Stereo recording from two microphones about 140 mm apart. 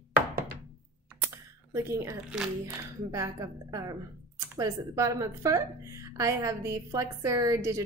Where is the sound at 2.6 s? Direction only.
20° right (ahead or behind).